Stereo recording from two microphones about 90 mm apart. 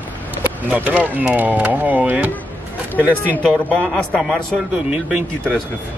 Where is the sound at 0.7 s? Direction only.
15° right (ahead or behind).